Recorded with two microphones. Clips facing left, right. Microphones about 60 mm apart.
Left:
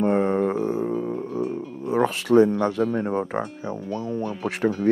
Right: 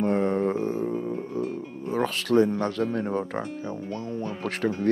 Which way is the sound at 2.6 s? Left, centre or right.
Centre.